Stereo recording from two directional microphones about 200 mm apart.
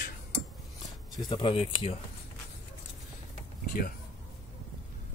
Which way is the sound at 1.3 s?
25° left (ahead or behind).